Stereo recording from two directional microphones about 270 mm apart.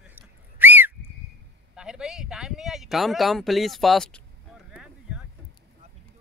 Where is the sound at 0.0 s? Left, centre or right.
Centre.